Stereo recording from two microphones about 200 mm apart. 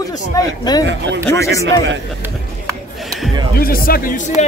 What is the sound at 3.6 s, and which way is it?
Speech, 45° left (ahead or behind).